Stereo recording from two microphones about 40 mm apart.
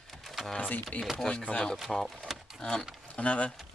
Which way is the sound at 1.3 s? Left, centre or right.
Left.